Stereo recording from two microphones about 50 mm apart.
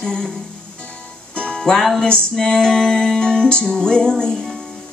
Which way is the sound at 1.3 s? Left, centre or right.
Centre.